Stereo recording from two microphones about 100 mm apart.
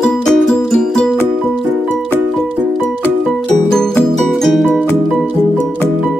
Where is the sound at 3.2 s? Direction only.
Centre (ahead or behind).